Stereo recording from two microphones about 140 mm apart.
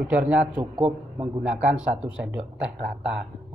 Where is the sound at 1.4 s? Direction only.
10° right (ahead or behind).